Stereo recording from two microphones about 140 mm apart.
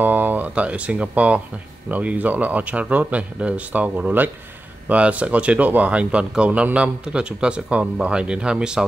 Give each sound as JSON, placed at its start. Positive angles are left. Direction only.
{"t": 0.0, "sound": "speech", "side_deg": -15}